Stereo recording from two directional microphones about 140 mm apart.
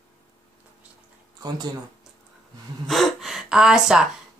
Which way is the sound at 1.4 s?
30° right (ahead or behind).